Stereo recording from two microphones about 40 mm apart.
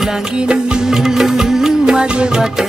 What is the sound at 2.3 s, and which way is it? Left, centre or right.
Music, centre.